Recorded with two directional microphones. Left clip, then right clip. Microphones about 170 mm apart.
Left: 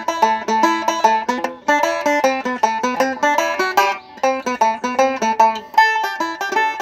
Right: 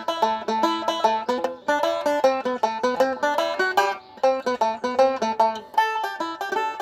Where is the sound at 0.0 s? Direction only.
15° left (ahead or behind).